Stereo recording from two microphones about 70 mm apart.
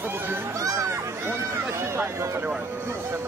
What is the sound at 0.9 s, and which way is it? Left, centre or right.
Run, right.